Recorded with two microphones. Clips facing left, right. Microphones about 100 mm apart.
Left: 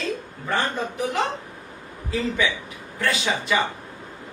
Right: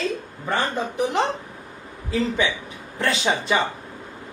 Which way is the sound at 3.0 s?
30° right (ahead or behind).